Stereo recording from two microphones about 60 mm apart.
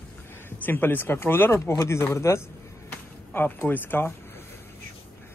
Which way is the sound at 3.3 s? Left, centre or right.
Left.